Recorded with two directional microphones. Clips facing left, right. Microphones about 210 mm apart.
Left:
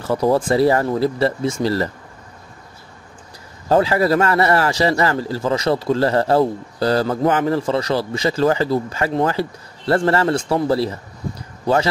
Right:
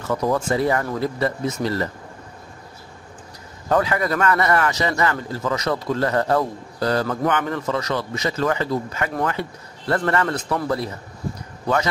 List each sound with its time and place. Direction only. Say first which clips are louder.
0.0 s speech: left 4 dB; 30° left (ahead or behind)
3.6 s a man's voice: left 5 dB; 30° left (ahead or behind)